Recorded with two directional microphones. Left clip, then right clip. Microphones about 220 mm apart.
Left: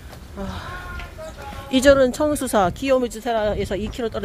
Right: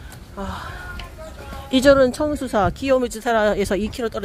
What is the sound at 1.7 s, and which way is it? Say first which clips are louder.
Speech: right 1 dB; 10° right (ahead or behind).